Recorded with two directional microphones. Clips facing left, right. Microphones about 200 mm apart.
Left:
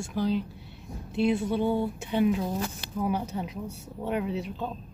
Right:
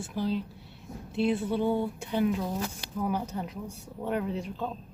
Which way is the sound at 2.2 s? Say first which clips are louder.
Left 3 dB; 15° left (ahead or behind).